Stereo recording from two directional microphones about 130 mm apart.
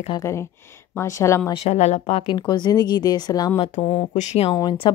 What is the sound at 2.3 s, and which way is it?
Speech, 35° left (ahead or behind).